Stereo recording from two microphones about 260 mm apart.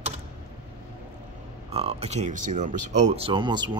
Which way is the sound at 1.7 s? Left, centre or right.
Right.